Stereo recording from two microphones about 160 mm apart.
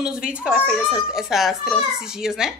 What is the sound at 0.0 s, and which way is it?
A child's voice, 5° right (ahead or behind).